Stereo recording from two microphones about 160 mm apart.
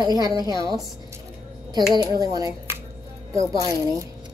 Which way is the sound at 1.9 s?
20° right (ahead or behind).